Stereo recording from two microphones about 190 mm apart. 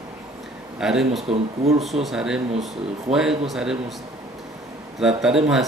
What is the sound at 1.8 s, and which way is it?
Speech, centre (ahead or behind).